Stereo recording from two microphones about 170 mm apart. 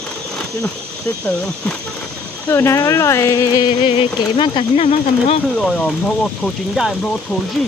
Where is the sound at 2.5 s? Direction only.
15° left (ahead or behind).